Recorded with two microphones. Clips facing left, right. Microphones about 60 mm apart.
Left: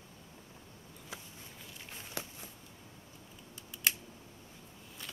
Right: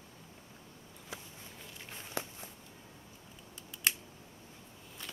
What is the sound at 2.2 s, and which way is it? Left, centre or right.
Walk, right.